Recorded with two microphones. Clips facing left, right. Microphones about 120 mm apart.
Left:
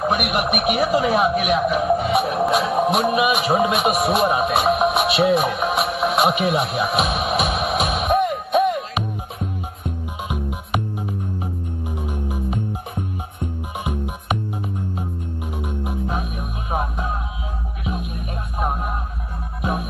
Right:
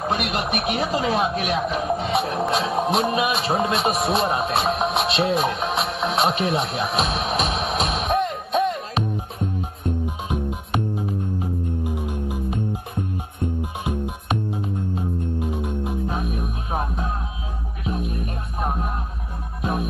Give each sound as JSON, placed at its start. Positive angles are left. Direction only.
{"t": 0.0, "sound": "radio", "side_deg": 15}
{"t": 11.9, "sound": "music", "side_deg": 20}
{"t": 15.5, "sound": "music", "side_deg": 15}